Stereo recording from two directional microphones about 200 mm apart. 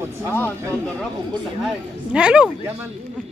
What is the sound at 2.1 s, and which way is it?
Speech, 5° right (ahead or behind).